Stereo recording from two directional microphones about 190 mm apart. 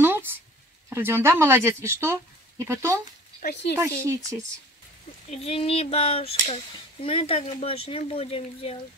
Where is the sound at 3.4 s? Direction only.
50° left (ahead or behind).